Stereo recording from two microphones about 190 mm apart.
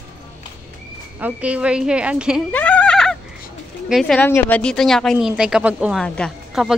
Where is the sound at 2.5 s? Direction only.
5° left (ahead or behind).